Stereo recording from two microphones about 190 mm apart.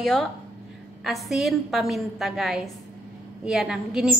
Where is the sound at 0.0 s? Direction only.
Centre (ahead or behind).